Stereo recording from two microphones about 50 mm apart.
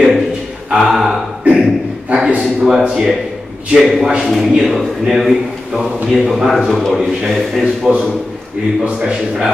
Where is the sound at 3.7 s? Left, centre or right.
Centre.